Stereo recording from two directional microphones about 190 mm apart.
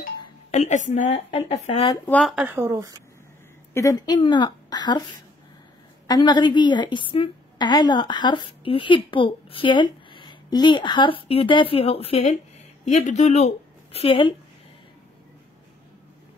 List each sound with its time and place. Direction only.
0.5 s a woman's voice: 40° left (ahead or behind)
1.3 s a woman's voice: 25° left (ahead or behind)
2.0 s speech: 5° left (ahead or behind); by 2.9 s 15° right (ahead or behind)
3.7 s a woman's voice: 20° left (ahead or behind)
6.0 s a woman's voice: 20° left (ahead or behind)